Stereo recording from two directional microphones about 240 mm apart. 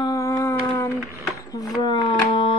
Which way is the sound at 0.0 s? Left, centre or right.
Centre.